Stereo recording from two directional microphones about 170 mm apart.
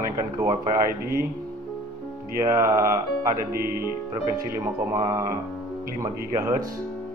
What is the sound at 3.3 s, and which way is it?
Music, 60° right (ahead or behind).